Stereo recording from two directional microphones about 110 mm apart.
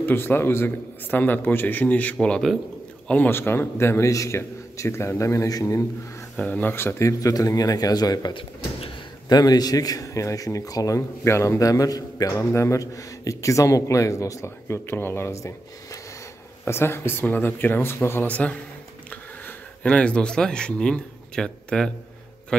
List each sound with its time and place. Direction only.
0.0 s a man's voice: 20° left (ahead or behind)
3.1 s a man's voice: 15° left (ahead or behind)
6.3 s speech: 15° left (ahead or behind); by 9.4 s 50° left (ahead or behind)
9.4 s a man's voice: 35° left (ahead or behind); by 22.7 s 5° left (ahead or behind)